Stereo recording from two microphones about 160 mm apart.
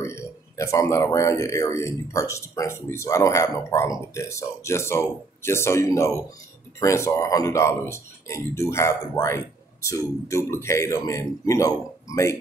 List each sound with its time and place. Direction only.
0.0 s speech: 15° left (ahead or behind)